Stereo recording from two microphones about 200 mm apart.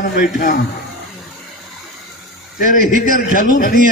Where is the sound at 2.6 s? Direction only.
40° left (ahead or behind).